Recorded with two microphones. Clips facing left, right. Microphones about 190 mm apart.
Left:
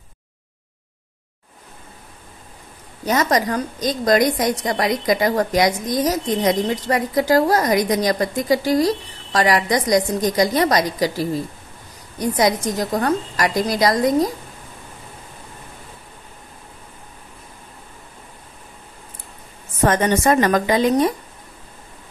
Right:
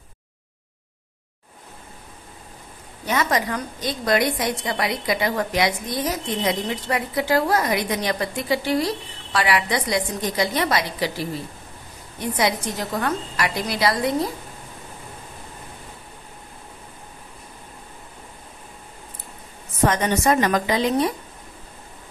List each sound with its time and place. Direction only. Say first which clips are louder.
3.1 s a woman's voice: left 4 dB; 40° left (ahead or behind)
19.8 s a woman's voice: left 3 dB; 50° left (ahead or behind)